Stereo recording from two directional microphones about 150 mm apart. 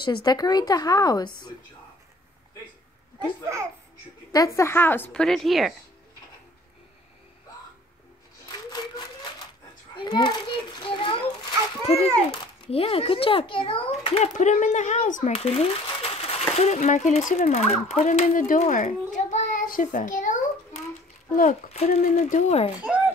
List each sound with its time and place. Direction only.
0.0 s speech: 30° left (ahead or behind)
4.3 s a woman's voice: 20° left (ahead or behind); by 5.8 s centre (ahead or behind)
8.5 s a sound: 25° left (ahead or behind)
9.9 s a child's voice: 30° left (ahead or behind); by 15.3 s 55° left (ahead or behind)
15.3 s speech: 40° left (ahead or behind)
18.3 s a child's voice: 60° left (ahead or behind)
22.1 s speech: 45° left (ahead or behind)
22.8 s speech: 10° right (ahead or behind)